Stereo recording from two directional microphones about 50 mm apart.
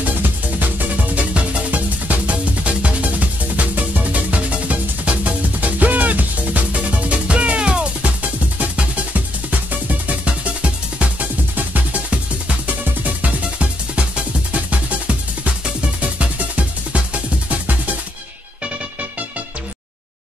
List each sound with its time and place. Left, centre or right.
0.0 s music: right
7.1 s music: right